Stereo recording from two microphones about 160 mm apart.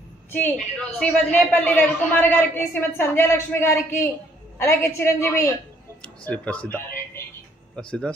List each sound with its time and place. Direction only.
0.3 s a man's voice: 10° left (ahead or behind)